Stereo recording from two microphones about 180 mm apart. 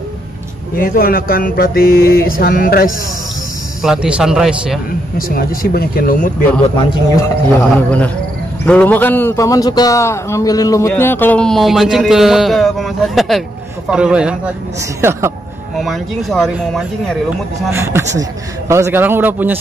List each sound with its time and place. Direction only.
0.7 s a sound: 55° left (ahead or behind)
3.8 s speech: 5° right (ahead or behind)
5.3 s speech: 55° left (ahead or behind)
7.5 s a man's voice: 5° left (ahead or behind); by 15.3 s 15° right (ahead or behind)
15.8 s speech: centre (ahead or behind)
17.6 s a man's voice: 15° right (ahead or behind)